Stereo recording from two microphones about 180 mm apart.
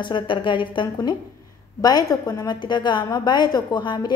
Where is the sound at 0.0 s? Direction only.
25° left (ahead or behind).